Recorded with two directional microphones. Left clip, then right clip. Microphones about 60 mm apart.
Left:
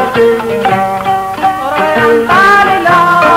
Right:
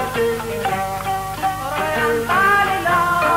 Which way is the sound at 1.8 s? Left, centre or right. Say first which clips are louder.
Left 11 dB; right.